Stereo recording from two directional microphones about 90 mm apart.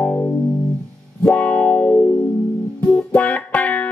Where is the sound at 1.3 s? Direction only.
15° left (ahead or behind).